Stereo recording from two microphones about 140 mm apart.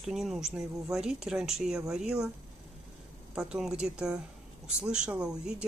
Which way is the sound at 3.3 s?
5° right (ahead or behind).